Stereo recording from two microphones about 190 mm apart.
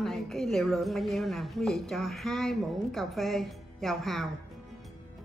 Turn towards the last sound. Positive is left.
turn(degrees=0)  # may be behind; listen again after turning